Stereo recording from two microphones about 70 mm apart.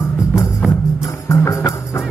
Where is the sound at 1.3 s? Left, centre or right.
Left.